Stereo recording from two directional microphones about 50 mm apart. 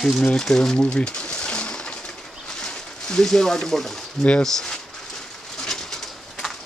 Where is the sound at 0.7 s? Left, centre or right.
Centre.